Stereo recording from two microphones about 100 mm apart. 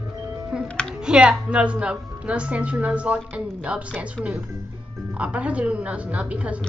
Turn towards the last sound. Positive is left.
turn(degrees=-10)  # may be behind; listen again after turning